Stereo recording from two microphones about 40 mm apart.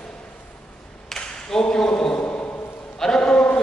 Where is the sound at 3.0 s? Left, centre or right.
Centre.